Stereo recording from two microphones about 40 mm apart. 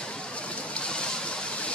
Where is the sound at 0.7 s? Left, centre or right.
Left.